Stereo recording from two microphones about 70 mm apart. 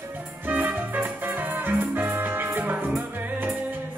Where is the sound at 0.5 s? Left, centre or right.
Right.